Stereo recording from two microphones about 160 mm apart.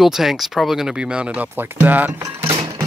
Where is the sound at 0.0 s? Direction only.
Centre (ahead or behind).